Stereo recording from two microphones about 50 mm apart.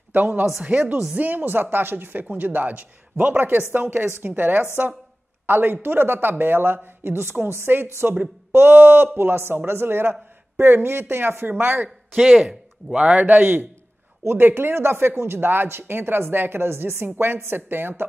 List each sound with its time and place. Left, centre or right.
0.1 s speech: right
11.6 s a man's voice: right
12.2 s speech: centre
12.4 s a man's voice: centre; by 13.7 s right
14.2 s speech: right
17.0 s speech: right